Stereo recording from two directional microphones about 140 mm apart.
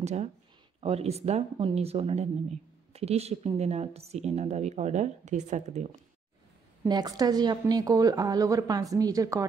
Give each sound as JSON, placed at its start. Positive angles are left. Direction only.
{"t": 0.0, "sound": "a woman's voice", "side_deg": -55}
{"t": 6.9, "sound": "a woman's voice", "side_deg": -30}